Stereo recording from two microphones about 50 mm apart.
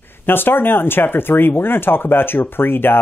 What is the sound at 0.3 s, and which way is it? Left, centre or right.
Speech, left.